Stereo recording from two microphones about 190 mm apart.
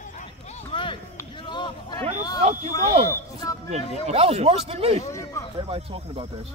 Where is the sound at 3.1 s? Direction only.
15° left (ahead or behind).